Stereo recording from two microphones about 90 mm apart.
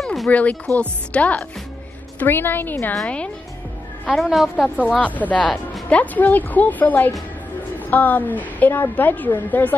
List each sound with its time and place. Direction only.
0.0 s a sound: centre (ahead or behind)
0.3 s a woman's voice: 15° left (ahead or behind)
4.1 s a woman's voice: centre (ahead or behind)
4.6 s a woman's voice: 15° left (ahead or behind)